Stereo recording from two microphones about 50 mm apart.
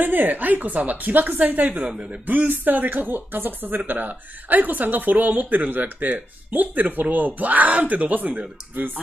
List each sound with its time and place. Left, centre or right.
0.0 s speech: right